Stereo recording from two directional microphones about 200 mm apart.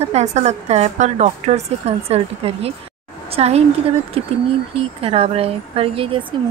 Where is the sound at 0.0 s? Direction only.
35° right (ahead or behind).